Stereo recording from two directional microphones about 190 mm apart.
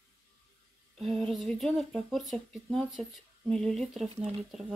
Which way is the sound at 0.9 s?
Centre (ahead or behind).